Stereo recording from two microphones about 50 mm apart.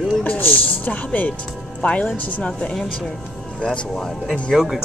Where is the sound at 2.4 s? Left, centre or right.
Left.